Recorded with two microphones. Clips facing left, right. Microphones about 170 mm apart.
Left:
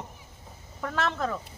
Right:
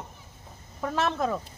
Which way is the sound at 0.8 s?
15° right (ahead or behind).